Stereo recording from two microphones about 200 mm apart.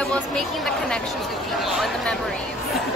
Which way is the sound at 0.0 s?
Centre (ahead or behind).